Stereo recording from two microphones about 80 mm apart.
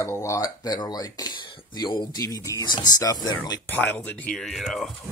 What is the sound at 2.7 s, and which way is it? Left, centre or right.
Speech, left.